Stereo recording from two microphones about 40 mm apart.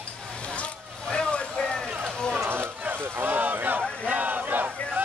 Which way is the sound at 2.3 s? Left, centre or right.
Right.